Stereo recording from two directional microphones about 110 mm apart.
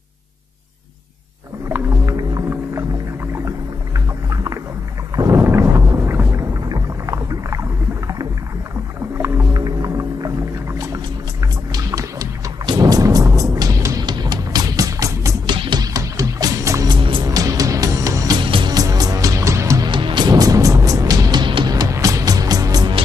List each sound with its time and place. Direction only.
1.7 s music: 30° right (ahead or behind)
3.4 s boat: 30° right (ahead or behind)
5.1 s a sound: 35° right (ahead or behind)
5.4 s boat: 25° right (ahead or behind)
6.7 s rowboat: 30° right (ahead or behind)
9.2 s music: 35° right (ahead or behind)
11.7 s music: 30° right (ahead or behind)
15.4 s music: 45° right (ahead or behind)
16.9 s music: 45° right (ahead or behind)
17.3 s music: 35° right (ahead or behind)
18.4 s music: 50° right (ahead or behind)
18.8 s music: 35° right (ahead or behind)
19.9 s music: 45° right (ahead or behind)